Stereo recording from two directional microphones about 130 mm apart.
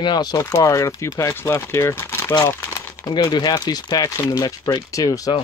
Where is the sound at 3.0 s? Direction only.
35° left (ahead or behind).